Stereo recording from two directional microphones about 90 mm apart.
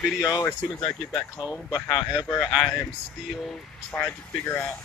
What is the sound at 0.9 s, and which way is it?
Speech, 5° left (ahead or behind).